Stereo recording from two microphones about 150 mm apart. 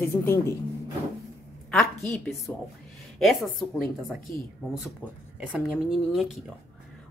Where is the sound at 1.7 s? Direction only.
5° left (ahead or behind).